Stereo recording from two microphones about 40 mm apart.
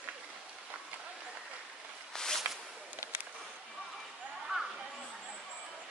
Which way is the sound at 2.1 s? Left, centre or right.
Centre.